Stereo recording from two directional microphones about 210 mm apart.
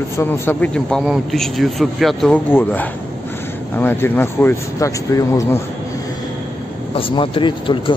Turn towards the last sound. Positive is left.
turn(degrees=25)  # may be behind; listen again after turning